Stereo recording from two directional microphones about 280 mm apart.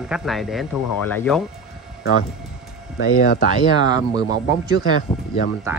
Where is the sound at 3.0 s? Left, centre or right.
Left.